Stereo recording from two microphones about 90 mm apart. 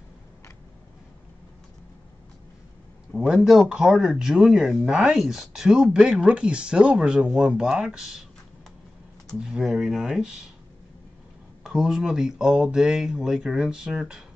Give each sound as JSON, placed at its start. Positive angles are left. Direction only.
{"t": 3.1, "sound": "speech", "side_deg": -5}
{"t": 9.4, "sound": "speech", "side_deg": -5}
{"t": 11.6, "sound": "speech", "side_deg": -5}